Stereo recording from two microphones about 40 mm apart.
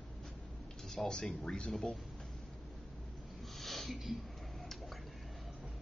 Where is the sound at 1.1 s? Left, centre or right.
Centre.